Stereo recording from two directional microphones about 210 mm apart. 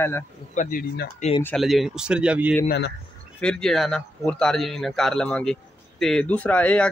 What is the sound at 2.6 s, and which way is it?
Speech, 50° left (ahead or behind).